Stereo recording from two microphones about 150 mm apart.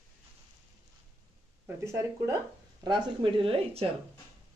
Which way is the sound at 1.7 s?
20° right (ahead or behind).